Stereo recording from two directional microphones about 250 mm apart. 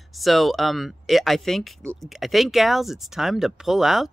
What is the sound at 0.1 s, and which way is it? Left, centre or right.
Speech, centre.